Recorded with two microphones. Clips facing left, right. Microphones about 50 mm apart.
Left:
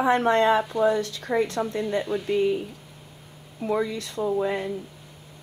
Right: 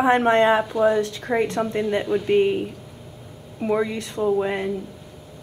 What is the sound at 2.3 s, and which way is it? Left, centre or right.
Speech, right.